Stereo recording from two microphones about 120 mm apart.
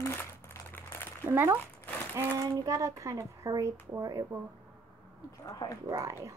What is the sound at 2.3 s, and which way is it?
Speech, 30° right (ahead or behind).